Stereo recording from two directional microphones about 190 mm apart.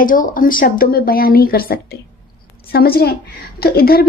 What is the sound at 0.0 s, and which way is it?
Speech, 45° left (ahead or behind).